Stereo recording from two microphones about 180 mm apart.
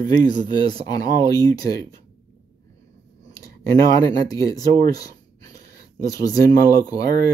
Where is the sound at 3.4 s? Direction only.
20° left (ahead or behind).